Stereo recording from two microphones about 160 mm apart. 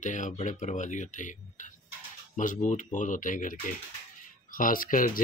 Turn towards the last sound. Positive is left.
turn(degrees=60)  # may be behind; listen again after turning